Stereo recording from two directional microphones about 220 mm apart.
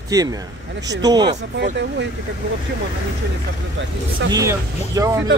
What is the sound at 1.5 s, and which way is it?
Speech, 50° right (ahead or behind).